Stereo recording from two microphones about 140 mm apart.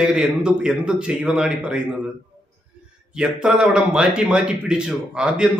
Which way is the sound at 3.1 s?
5° right (ahead or behind).